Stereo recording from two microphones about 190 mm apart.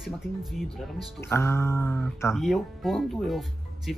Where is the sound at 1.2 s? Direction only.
15° left (ahead or behind).